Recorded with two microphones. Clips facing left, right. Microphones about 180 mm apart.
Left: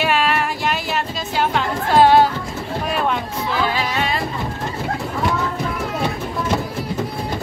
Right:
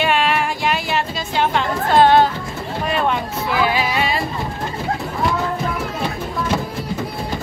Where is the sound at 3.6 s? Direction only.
10° right (ahead or behind).